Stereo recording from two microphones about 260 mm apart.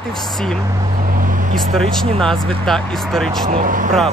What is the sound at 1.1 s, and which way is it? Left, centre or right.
Vehicle, right.